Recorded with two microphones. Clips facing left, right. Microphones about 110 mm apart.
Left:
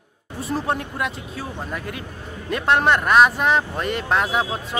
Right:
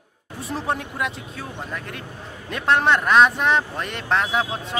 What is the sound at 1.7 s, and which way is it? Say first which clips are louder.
A man's voice: left 2 dB; 5° left (ahead or behind).